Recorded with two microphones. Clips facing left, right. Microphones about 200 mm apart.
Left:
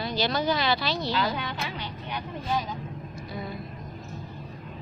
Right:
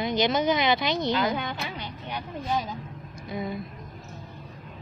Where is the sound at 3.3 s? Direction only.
20° right (ahead or behind).